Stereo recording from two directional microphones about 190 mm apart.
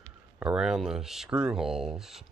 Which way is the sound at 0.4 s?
5° right (ahead or behind).